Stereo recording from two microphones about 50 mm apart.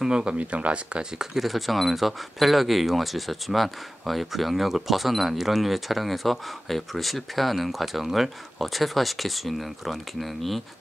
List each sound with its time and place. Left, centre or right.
0.0 s speech: centre
1.1 s speech: centre